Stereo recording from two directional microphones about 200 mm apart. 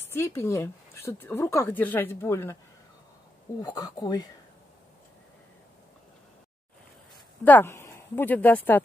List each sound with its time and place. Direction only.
0.1 s speech: 10° left (ahead or behind)
3.6 s speech: 20° left (ahead or behind)
7.4 s speech: 10° left (ahead or behind)